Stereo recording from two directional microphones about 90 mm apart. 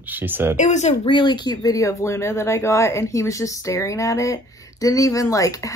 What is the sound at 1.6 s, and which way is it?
Speech, 40° left (ahead or behind).